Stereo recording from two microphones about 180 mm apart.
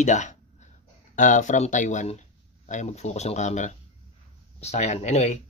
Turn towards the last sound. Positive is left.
turn(degrees=40)  # may be behind; listen again after turning